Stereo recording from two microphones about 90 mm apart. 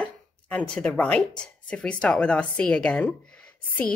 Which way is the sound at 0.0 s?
15° left (ahead or behind).